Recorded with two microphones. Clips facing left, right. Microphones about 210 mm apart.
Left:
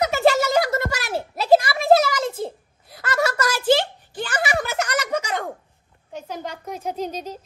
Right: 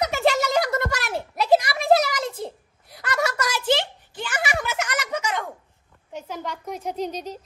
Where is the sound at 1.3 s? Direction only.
25° left (ahead or behind).